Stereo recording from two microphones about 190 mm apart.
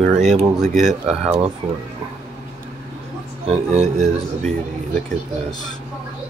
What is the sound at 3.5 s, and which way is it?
Speech, 35° right (ahead or behind).